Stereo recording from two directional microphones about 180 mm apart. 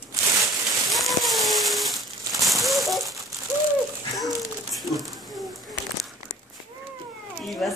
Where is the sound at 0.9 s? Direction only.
Centre (ahead or behind).